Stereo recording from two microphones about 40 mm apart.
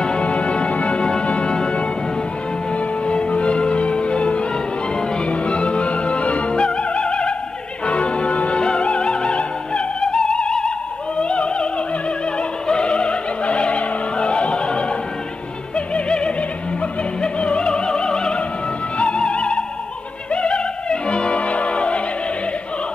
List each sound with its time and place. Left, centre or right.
0.0 s music: left
3.1 s music: left
11.1 s opera: left
15.7 s music: left